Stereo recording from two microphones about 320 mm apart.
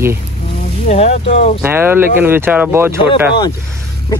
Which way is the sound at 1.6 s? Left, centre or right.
Centre.